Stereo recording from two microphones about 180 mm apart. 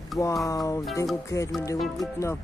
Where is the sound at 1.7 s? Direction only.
Centre (ahead or behind).